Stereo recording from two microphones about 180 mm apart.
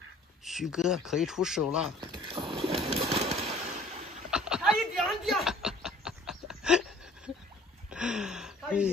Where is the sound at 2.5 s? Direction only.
30° right (ahead or behind).